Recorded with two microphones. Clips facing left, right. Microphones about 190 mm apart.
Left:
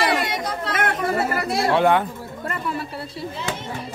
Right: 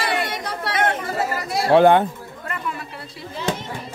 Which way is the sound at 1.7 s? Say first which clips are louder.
Right 6 dB; 30° right (ahead or behind).